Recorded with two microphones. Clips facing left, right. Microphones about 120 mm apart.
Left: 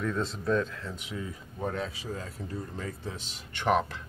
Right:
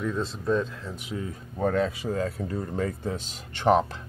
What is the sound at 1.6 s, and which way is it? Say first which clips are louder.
Speech: right 9 dB; 60° right (ahead or behind).